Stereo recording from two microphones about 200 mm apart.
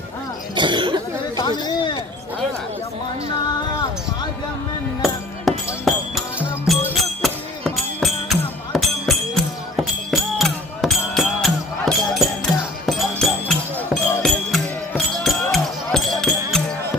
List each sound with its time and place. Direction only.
0.6 s cough: 25° right (ahead or behind)
1.7 s speech: 25° left (ahead or behind)
5.0 s music: centre (ahead or behind)
12.5 s music: 20° left (ahead or behind)
12.8 s music: centre (ahead or behind)